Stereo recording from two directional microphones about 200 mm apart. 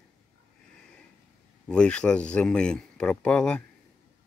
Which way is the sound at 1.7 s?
5° left (ahead or behind).